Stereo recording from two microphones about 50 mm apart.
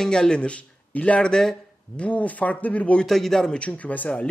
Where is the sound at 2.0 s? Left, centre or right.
Left.